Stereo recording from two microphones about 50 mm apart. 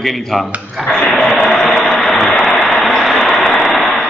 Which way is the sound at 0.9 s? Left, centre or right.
Centre.